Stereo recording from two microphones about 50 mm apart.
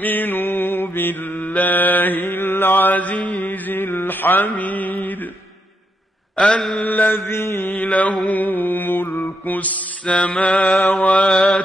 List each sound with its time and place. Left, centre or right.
0.0 s mantra: left
1.4 s mantra: left
3.4 s mantra: left
6.3 s mantra: centre
6.8 s mantra: left
9.6 s mantra: left